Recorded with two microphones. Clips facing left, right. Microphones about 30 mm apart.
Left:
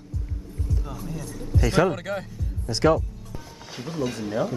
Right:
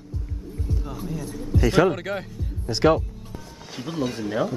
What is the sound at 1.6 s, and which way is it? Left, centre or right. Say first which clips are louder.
A man's voice: right 2 dB; centre.